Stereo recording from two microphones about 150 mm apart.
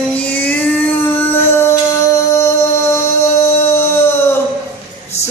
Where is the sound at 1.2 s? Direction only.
15° left (ahead or behind).